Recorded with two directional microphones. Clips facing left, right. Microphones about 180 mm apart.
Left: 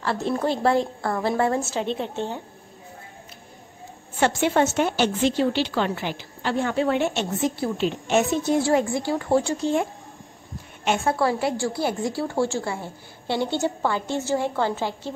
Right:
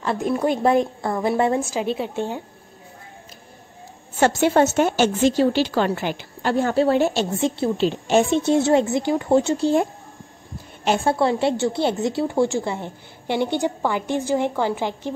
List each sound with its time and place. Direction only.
0.0 s a woman's voice: 20° right (ahead or behind)
1.6 s a woman's voice: centre (ahead or behind)
4.2 s a woman's voice: 40° right (ahead or behind)
6.5 s a woman's voice: 40° right (ahead or behind); by 9.7 s 20° right (ahead or behind)
10.8 s a woman's voice: 30° right (ahead or behind); by 15.1 s 15° right (ahead or behind)